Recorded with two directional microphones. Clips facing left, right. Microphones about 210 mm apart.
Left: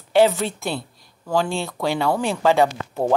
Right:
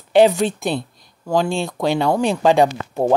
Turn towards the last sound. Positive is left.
turn(degrees=-15)  # may be behind; listen again after turning